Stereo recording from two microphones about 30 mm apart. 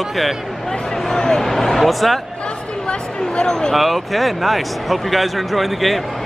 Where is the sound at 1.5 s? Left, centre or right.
Centre.